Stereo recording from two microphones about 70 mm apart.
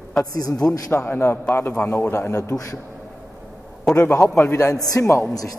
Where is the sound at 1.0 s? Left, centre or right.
Left.